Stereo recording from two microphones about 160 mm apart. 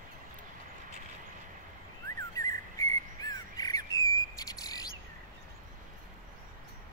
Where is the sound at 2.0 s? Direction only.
20° left (ahead or behind).